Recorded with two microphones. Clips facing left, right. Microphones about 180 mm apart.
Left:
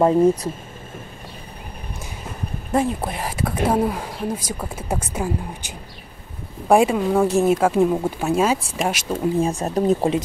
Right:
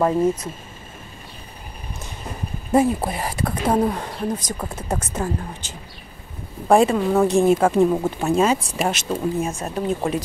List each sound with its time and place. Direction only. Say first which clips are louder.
0.0 s speech: left 3 dB; 20° left (ahead or behind)
2.7 s speech: right 3 dB; 5° right (ahead or behind)
9.4 s speech: left 4 dB; 35° left (ahead or behind)